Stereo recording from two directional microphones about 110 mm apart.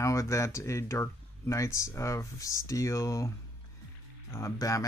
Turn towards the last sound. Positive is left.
turn(degrees=30)  # may be behind; listen again after turning